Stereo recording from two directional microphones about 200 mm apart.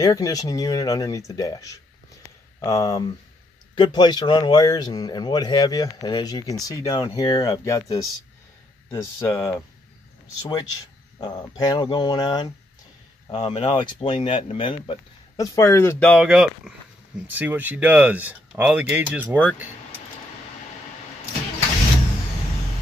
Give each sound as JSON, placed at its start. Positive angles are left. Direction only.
{"t": 0.0, "sound": "speech", "side_deg": 15}
{"t": 11.1, "sound": "speech", "side_deg": 20}
{"t": 16.3, "sound": "speech", "side_deg": -5}